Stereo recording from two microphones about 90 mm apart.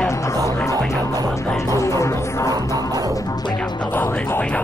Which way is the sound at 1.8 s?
35° left (ahead or behind).